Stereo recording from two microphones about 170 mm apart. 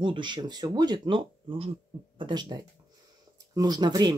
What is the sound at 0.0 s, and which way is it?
Speech, 30° right (ahead or behind).